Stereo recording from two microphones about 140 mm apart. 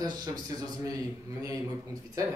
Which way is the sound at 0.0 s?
30° right (ahead or behind).